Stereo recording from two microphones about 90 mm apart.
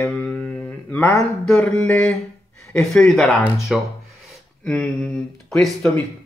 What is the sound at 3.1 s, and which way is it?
Speech, 5° left (ahead or behind).